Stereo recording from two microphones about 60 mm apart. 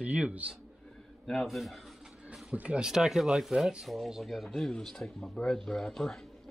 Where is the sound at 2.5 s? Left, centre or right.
Centre.